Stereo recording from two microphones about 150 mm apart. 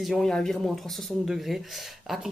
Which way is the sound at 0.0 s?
Centre (ahead or behind).